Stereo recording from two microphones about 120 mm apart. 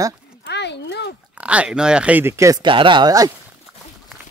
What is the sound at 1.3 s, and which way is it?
Speech, 10° right (ahead or behind).